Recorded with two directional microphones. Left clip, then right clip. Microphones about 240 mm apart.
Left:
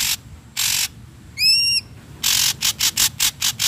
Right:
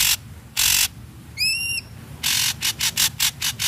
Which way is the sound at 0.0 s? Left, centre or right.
Centre.